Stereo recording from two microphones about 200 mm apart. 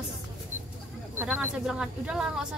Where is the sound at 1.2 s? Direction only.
5° right (ahead or behind).